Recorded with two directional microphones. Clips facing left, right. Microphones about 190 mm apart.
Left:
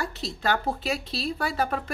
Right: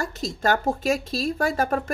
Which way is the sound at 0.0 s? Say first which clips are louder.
Right 4 dB; 45° right (ahead or behind).